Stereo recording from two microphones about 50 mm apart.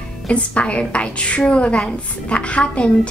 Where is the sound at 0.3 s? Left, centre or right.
Left.